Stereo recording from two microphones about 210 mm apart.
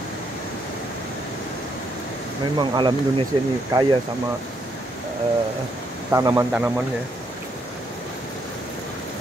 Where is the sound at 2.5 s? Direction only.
20° right (ahead or behind).